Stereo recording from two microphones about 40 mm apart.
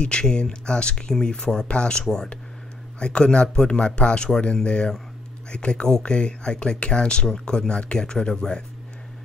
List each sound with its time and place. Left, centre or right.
0.0 s speech: left